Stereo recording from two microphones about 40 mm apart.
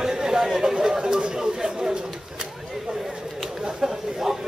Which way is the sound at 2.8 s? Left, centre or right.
Centre.